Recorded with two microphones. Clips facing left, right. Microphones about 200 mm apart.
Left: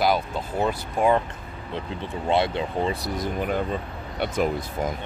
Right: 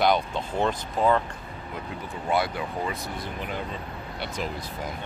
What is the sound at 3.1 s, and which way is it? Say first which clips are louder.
Speech: left 7 dB; 50° left (ahead or behind).